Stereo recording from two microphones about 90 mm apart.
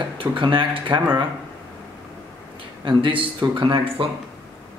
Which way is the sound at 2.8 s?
65° right (ahead or behind).